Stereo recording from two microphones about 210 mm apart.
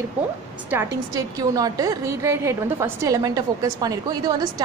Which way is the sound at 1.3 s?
15° right (ahead or behind).